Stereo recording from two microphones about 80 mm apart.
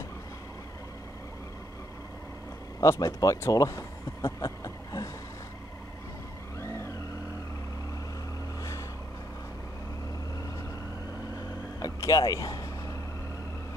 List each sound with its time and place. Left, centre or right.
2.8 s speech: left
6.6 s vehicle: left
11.8 s vehicle: left